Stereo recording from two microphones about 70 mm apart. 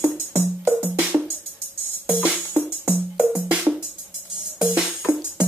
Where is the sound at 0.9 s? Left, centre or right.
Right.